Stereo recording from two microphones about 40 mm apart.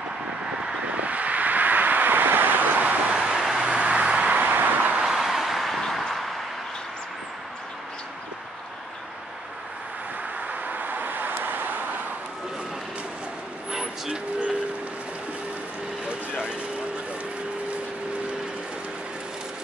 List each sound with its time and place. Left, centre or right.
0.5 s vehicle: centre
0.8 s vehicle: right
3.1 s vehicle: right
3.3 s vehicle: centre
3.6 s vehicle: right
4.3 s vehicle: right
5.0 s vehicle: centre
6.1 s a sound: centre
10.4 s vehicle: right
13.7 s vehicle: centre
14.1 s a sound: right
16.1 s a sound: right